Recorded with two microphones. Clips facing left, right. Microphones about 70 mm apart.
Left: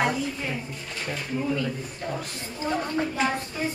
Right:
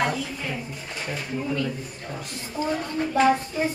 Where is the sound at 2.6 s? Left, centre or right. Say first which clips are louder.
Right 3 dB; left.